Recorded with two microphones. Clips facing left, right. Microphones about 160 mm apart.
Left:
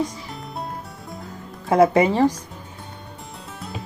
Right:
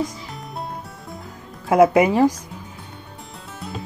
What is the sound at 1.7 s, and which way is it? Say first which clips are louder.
Speech: right 1 dB; 10° right (ahead or behind).